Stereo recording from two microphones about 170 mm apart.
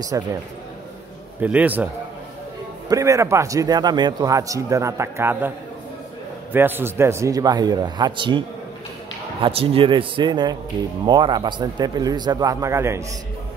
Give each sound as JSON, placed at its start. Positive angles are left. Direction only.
{"t": 0.1, "sound": "a man's voice", "side_deg": -20}
{"t": 1.4, "sound": "a man's voice", "side_deg": -10}
{"t": 2.9, "sound": "a man's voice", "side_deg": -20}
{"t": 6.5, "sound": "a man's voice", "side_deg": -10}